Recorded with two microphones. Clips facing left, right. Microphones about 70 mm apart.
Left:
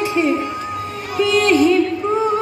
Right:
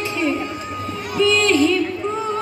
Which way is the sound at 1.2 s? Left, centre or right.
Left.